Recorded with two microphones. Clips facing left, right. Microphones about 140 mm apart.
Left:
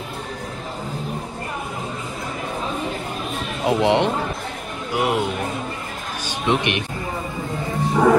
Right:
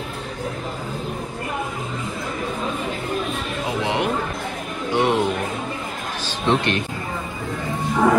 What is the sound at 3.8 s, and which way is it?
Speech, 25° left (ahead or behind).